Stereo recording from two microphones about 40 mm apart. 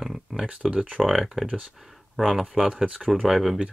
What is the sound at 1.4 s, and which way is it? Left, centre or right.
Speech, right.